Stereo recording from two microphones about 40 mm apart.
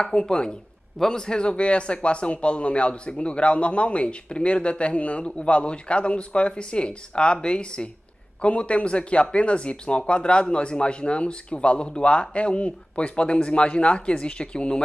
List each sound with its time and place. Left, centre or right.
0.0 s a man's voice: centre